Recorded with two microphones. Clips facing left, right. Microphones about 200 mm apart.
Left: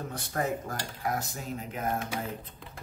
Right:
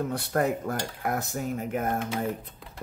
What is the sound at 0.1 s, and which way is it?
Cutlery, 60° right (ahead or behind).